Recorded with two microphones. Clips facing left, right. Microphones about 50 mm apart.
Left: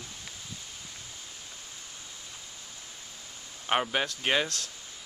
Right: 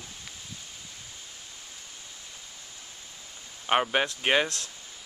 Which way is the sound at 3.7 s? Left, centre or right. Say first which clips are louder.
Right 3 dB; centre.